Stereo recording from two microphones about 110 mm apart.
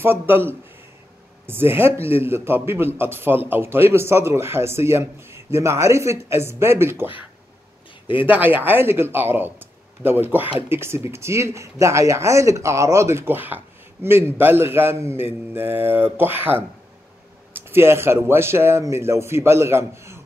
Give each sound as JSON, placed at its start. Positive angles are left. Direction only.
{"t": 0.0, "sound": "speech", "side_deg": -20}
{"t": 8.3, "sound": "speech", "side_deg": -15}